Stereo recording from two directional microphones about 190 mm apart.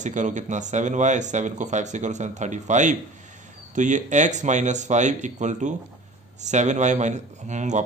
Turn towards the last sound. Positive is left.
turn(degrees=-40)  # may be behind; listen again after turning